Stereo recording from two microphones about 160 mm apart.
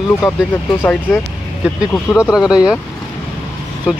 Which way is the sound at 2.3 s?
5° right (ahead or behind).